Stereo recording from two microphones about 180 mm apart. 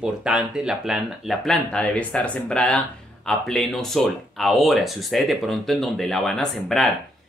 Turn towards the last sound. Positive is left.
turn(degrees=0)  # may be behind; listen again after turning